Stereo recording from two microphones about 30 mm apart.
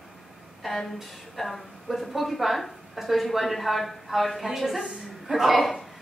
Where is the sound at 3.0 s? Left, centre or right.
Centre.